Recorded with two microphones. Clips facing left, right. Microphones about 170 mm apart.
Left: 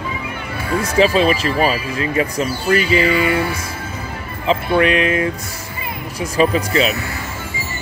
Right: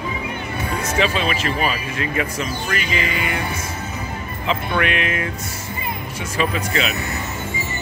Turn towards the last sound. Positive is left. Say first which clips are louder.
# left 5 dB
turn(degrees=35)  # may be behind; listen again after turning